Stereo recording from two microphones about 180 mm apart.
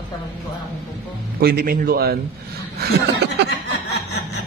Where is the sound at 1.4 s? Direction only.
60° right (ahead or behind).